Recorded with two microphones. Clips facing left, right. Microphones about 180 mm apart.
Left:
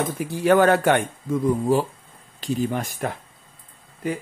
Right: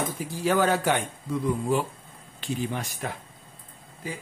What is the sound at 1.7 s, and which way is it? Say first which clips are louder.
Speech: left 5 dB; 35° left (ahead or behind).